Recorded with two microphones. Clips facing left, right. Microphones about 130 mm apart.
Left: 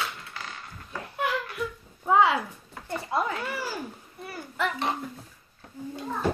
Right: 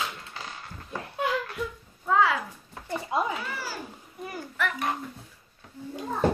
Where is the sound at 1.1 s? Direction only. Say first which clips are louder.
Right 1 dB; 25° right (ahead or behind).